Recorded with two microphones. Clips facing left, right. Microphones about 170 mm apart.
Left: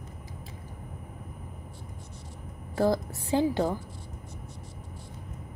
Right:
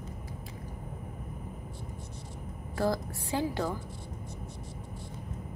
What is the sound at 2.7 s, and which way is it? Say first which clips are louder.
A woman's voice: left 4 dB; 25° left (ahead or behind).